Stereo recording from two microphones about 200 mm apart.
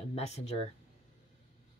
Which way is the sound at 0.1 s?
30° left (ahead or behind).